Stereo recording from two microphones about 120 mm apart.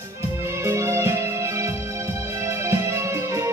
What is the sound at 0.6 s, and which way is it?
Music, 25° right (ahead or behind).